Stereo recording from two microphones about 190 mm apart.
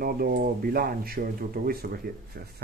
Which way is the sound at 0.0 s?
50° right (ahead or behind).